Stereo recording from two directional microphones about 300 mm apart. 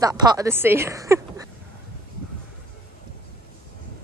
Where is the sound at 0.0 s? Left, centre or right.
Centre.